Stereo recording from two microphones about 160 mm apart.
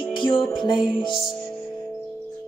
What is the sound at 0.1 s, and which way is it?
Music, 35° left (ahead or behind).